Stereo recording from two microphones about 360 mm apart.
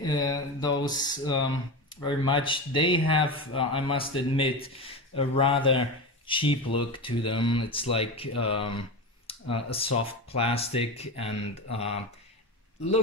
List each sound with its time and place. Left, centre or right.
0.0 s speech: centre